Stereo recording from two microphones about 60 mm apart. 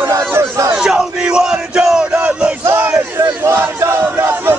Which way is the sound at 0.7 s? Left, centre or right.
Centre.